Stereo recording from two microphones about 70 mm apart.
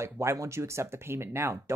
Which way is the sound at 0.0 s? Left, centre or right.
Right.